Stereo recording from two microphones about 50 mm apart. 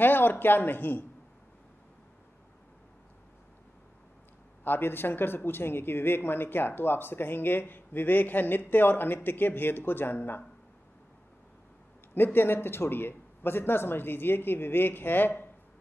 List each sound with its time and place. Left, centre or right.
0.0 s speech: left
4.6 s speech: left
12.1 s speech: left